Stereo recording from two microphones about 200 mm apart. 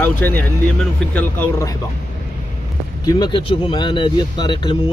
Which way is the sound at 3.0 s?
20° left (ahead or behind).